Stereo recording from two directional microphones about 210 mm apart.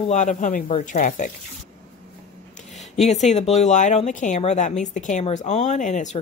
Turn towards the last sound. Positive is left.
turn(degrees=35)  # may be behind; listen again after turning